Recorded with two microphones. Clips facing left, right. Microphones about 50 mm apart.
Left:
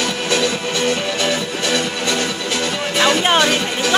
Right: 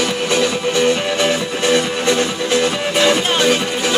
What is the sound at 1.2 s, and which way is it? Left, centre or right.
Music, right.